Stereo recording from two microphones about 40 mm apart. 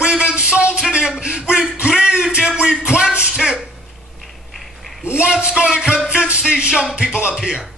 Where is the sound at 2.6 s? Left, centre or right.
Right.